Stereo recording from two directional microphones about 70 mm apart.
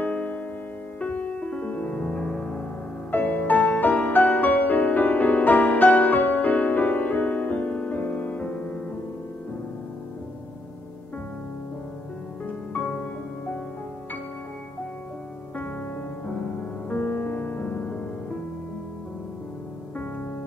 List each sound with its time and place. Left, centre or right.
0.0 s music: centre
3.1 s music: left
12.7 s music: left
16.9 s music: left